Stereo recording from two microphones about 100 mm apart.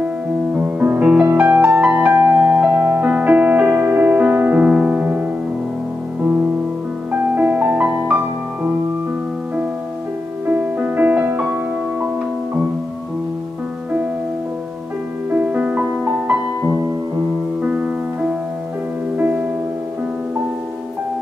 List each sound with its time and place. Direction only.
0.6 s music: 15° right (ahead or behind)
7.1 s music: 15° right (ahead or behind)
10.4 s music: 15° right (ahead or behind)
15.2 s music: 15° right (ahead or behind)